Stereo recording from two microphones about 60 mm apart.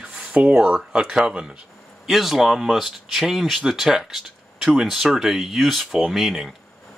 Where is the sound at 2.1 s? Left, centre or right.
Centre.